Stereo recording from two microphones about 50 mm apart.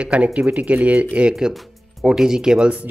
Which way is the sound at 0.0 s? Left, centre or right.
Right.